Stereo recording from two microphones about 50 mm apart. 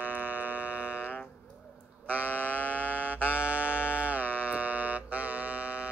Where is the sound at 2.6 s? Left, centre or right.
Left.